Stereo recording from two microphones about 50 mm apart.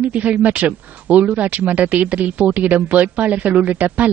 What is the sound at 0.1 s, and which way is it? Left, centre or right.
Speech, right.